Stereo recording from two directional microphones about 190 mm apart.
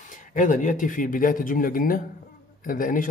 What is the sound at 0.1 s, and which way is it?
Speech, 45° left (ahead or behind).